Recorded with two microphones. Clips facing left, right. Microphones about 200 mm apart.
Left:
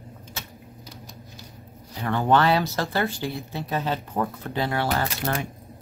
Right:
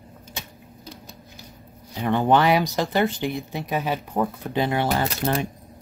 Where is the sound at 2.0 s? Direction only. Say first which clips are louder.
Right 2 dB; 20° right (ahead or behind).